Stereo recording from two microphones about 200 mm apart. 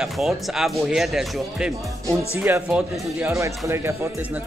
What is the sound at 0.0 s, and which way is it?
Speech, centre (ahead or behind).